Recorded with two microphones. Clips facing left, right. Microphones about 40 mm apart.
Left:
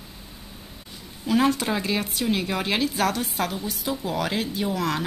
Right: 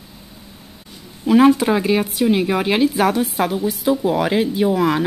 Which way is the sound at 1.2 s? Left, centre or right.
Centre.